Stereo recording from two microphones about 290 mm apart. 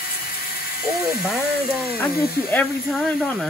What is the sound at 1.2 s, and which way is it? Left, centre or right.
Speech, centre.